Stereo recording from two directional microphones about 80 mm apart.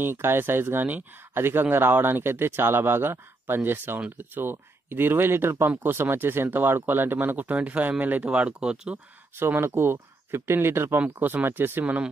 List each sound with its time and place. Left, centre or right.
0.0 s speech: right; by 8.9 s centre
9.4 s speech: right
11.8 s speech: centre